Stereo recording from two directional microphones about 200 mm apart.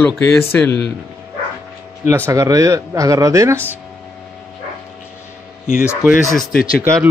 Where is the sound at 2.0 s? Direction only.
10° right (ahead or behind).